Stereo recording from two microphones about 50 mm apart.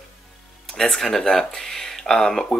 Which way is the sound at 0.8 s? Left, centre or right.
Centre.